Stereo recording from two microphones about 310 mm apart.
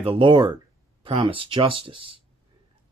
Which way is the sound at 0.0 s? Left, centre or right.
Centre.